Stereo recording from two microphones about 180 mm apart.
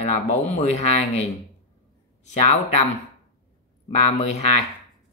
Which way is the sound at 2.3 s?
40° left (ahead or behind).